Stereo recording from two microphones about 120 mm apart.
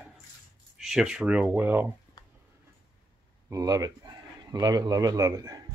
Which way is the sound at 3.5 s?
30° right (ahead or behind).